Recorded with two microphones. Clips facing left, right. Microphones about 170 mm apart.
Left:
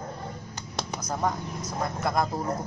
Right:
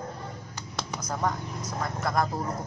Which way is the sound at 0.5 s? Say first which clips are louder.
Left 1 dB; 20° left (ahead or behind).